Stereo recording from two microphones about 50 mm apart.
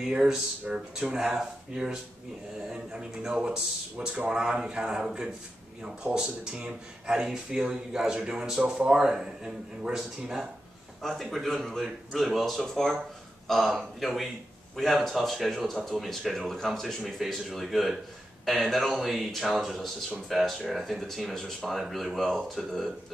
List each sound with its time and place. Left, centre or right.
0.0 s speech: centre
11.0 s speech: centre
16.8 s speech: centre